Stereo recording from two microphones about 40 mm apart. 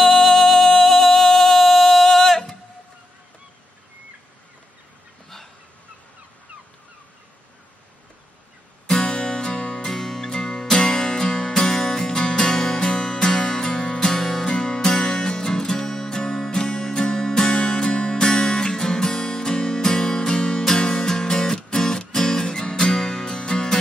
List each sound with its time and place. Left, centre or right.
0.0 s music: centre
8.8 s music: centre
9.8 s music: centre